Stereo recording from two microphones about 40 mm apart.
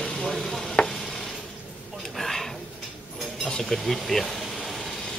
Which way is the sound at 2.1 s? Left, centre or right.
Centre.